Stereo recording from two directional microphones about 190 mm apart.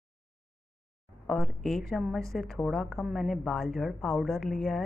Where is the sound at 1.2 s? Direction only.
Centre (ahead or behind).